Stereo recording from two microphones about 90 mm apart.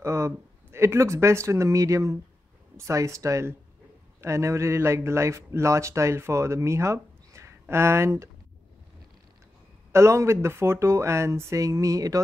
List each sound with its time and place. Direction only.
0.0 s speech: 30° right (ahead or behind)
9.9 s speech: 30° right (ahead or behind)